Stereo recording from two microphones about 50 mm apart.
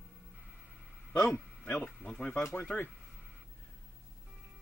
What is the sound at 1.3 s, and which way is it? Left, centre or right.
Speech, left.